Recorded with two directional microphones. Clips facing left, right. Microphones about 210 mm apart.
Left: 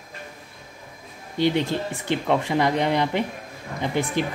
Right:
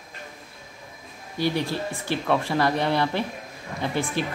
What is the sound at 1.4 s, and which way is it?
Speech, 20° left (ahead or behind).